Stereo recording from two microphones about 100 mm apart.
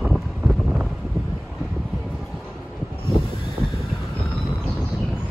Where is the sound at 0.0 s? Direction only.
Centre (ahead or behind).